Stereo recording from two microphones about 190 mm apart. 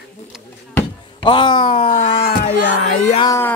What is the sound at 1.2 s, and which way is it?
Speech, 25° left (ahead or behind).